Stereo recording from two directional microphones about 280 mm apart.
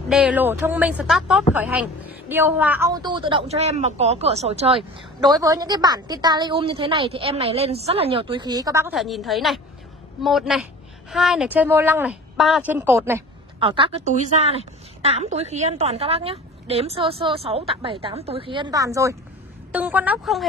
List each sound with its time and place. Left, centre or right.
0.1 s a woman's voice: centre